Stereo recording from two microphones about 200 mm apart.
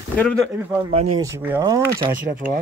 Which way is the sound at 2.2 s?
45° right (ahead or behind).